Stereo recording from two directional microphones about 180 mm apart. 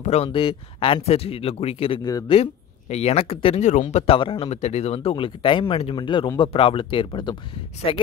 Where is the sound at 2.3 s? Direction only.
35° left (ahead or behind).